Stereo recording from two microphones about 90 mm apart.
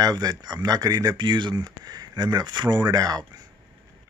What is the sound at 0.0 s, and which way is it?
Speech, 45° right (ahead or behind).